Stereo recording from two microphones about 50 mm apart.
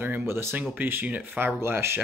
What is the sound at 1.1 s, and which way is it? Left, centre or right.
Speech, right.